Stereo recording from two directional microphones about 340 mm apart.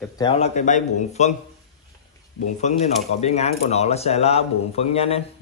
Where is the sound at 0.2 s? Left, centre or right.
Centre.